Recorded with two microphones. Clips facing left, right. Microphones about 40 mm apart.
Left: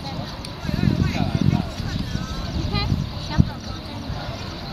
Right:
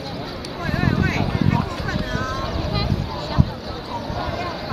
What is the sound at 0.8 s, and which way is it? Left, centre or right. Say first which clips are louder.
Vehicle: right 1 dB; right.